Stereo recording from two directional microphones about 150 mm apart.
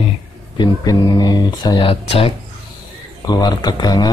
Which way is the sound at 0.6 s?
25° left (ahead or behind).